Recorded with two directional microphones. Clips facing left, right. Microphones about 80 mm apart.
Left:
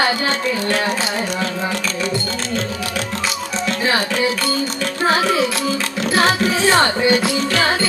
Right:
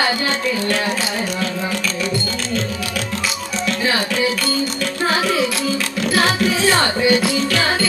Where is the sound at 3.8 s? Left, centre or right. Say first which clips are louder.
Left 1 dB; left.